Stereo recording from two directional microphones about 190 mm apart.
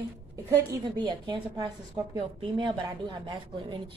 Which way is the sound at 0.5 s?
20° right (ahead or behind).